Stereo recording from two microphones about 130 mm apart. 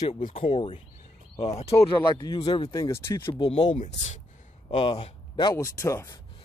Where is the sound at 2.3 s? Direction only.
40° left (ahead or behind).